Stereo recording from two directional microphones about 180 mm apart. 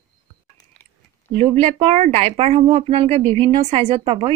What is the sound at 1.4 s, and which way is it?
A woman's voice, 30° right (ahead or behind).